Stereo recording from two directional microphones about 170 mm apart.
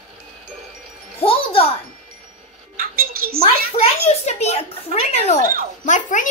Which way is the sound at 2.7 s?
60° right (ahead or behind).